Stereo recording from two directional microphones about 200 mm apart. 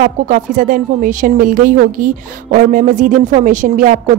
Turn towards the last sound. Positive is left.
turn(degrees=-40)  # may be behind; listen again after turning